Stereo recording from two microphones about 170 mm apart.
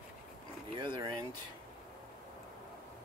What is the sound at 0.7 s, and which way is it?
Speech, 30° right (ahead or behind).